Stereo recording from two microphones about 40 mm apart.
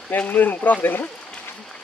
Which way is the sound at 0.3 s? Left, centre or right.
Left.